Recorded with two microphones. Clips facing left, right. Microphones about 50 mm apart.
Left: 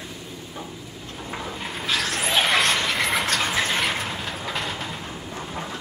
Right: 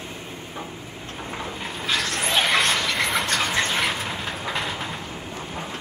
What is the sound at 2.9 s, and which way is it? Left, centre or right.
Train, centre.